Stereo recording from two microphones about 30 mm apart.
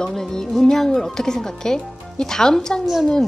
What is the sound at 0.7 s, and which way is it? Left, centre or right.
A woman's voice, centre.